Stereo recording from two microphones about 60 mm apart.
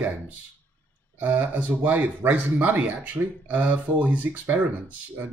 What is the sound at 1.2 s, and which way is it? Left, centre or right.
Speech, right.